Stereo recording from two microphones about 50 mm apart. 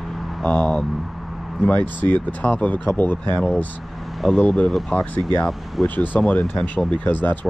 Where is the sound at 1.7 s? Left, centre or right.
Left.